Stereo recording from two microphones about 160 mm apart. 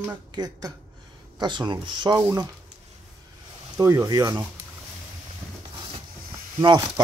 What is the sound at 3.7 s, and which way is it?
Speech, 20° right (ahead or behind).